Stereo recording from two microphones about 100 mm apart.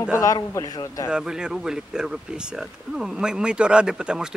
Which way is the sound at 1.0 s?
10° right (ahead or behind).